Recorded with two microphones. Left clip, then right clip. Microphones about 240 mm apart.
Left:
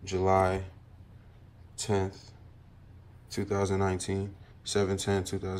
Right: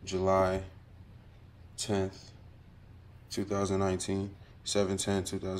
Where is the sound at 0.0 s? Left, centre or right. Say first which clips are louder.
Left 2 dB; centre.